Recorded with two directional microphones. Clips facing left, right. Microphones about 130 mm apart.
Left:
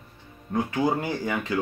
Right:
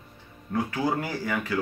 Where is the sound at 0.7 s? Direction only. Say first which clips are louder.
Left 4 dB; 20° left (ahead or behind).